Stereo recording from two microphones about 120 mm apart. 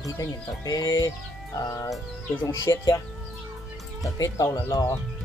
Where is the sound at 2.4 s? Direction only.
30° left (ahead or behind).